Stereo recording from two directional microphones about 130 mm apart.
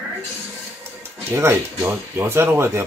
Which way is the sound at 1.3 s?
20° right (ahead or behind).